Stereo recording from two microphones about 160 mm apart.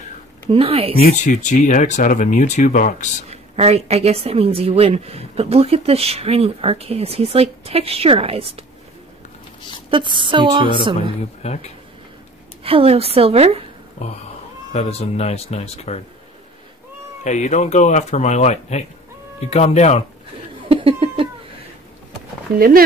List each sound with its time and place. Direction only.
0.5 s a woman's voice: 35° right (ahead or behind)
1.1 s speech: 50° left (ahead or behind)
3.3 s a woman's voice: 40° right (ahead or behind)
9.8 s a woman's voice: 30° right (ahead or behind)
11.4 s speech: 40° left (ahead or behind)
12.6 s a woman's voice: 35° right (ahead or behind)
14.0 s speech: 45° left (ahead or behind)
17.2 s speech: 50° left (ahead or behind)
20.6 s laughter: 35° right (ahead or behind)
22.6 s speech: 65° right (ahead or behind)